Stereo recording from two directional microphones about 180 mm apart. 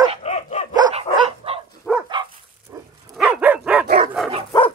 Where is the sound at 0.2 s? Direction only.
40° left (ahead or behind).